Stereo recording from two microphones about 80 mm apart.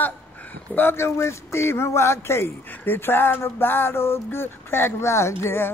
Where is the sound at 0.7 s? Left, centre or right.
Left.